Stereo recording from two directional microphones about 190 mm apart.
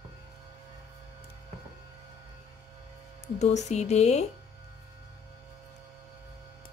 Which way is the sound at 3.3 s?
35° left (ahead or behind).